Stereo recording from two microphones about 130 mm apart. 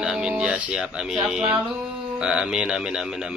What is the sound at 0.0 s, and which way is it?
Speech, 5° right (ahead or behind).